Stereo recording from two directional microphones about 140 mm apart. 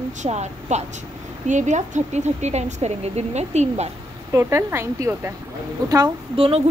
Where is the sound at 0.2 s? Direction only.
55° right (ahead or behind).